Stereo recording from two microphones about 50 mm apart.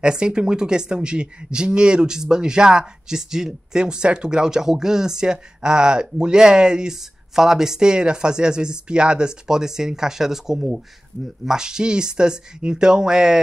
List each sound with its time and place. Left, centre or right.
0.0 s speech: centre